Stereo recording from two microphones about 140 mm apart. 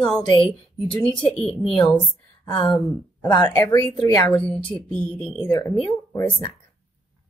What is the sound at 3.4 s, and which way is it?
Speech, 25° left (ahead or behind).